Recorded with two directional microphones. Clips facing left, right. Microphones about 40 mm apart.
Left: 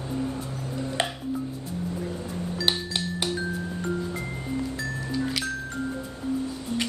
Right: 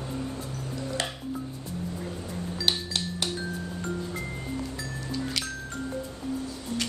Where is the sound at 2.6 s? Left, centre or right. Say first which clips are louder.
Left 1 dB; centre.